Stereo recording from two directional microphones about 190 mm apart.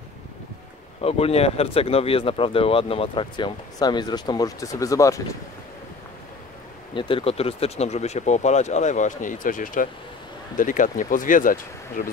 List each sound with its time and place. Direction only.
1.0 s speech: 30° left (ahead or behind); by 5.4 s 15° left (ahead or behind)
6.9 s speech: 25° left (ahead or behind); by 12.1 s 45° left (ahead or behind)